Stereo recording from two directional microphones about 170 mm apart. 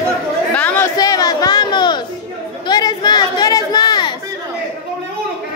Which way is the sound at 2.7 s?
25° left (ahead or behind).